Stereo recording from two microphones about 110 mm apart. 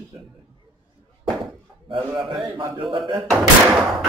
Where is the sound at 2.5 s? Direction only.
45° right (ahead or behind).